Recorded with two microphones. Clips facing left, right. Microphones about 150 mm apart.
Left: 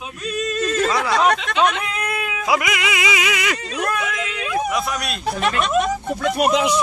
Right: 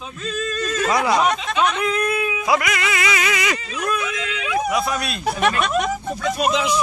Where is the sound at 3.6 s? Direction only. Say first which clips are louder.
Left 1 dB; 70° left (ahead or behind).